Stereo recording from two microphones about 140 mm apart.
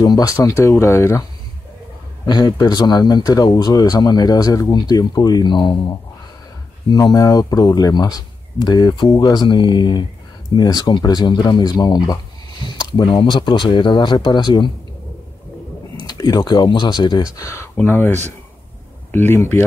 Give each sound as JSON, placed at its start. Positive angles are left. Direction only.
{"t": 0.0, "sound": "speech", "side_deg": 25}
{"t": 2.2, "sound": "speech", "side_deg": 30}
{"t": 6.9, "sound": "speech", "side_deg": 25}
{"t": 16.1, "sound": "speech", "side_deg": 30}